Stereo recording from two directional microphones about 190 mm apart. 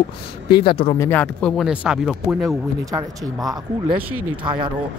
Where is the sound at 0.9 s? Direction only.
10° left (ahead or behind).